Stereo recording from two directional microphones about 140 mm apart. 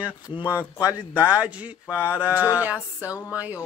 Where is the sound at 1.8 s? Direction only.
20° left (ahead or behind).